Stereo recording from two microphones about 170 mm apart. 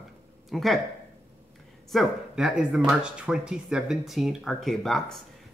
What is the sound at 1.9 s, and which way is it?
Speech, centre (ahead or behind).